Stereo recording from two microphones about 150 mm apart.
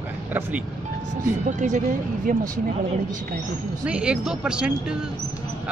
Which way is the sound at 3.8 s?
5° right (ahead or behind).